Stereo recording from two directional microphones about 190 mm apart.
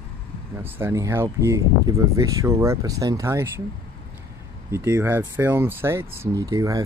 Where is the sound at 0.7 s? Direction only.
10° right (ahead or behind).